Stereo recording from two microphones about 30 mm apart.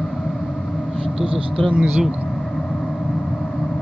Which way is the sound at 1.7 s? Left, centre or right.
Right.